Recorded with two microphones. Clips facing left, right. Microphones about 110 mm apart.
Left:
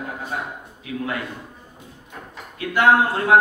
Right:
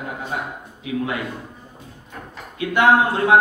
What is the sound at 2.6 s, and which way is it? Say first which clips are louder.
Speech: right 1 dB; 20° right (ahead or behind).